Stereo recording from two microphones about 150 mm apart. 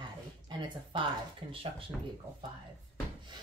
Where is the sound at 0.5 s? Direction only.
30° right (ahead or behind).